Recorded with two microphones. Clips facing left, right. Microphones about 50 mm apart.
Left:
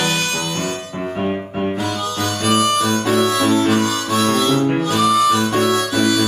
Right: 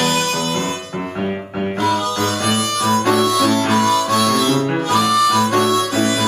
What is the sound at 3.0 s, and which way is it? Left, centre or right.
Harmonica, right.